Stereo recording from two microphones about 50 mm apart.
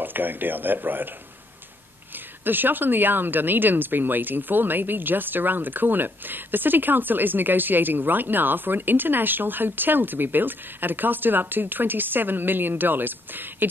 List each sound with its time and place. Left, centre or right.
0.0 s speech: right
2.1 s speech: right